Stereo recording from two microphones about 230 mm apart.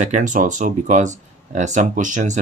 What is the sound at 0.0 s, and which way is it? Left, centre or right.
Speech, right.